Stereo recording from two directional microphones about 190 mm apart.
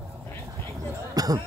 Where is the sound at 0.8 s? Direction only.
20° right (ahead or behind).